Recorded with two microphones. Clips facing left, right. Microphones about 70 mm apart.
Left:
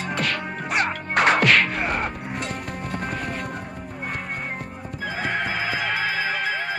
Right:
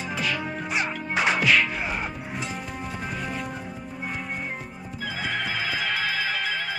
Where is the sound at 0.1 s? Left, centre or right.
Left.